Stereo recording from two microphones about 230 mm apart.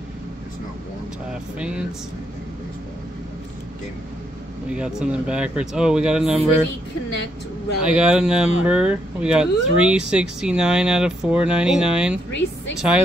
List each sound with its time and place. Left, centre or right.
1.6 s speech: centre
4.6 s speech: centre
7.8 s speech: centre
12.3 s a woman's voice: left
12.7 s speech: centre